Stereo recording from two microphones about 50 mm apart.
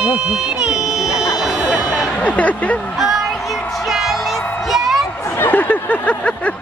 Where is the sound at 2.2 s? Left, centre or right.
Left.